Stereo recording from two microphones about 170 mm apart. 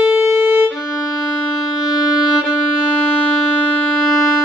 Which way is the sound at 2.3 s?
5° right (ahead or behind).